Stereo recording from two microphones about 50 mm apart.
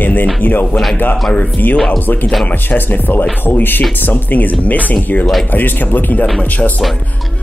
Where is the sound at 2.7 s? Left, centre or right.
Left.